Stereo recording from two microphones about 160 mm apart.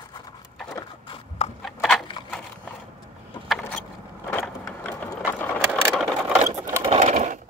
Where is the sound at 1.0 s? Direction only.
30° left (ahead or behind).